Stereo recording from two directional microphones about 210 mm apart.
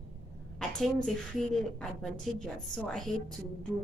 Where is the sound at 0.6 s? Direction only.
5° left (ahead or behind).